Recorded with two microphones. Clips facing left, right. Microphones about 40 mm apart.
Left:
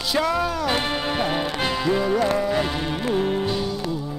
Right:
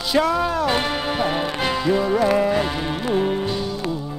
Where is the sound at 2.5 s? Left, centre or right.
Centre.